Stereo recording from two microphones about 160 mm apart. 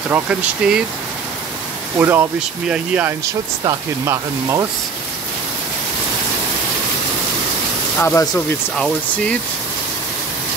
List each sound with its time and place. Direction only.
0.1 s speech: 5° right (ahead or behind)
2.0 s speech: 15° right (ahead or behind)
8.0 s speech: 15° left (ahead or behind)
8.7 s speech: 5° left (ahead or behind)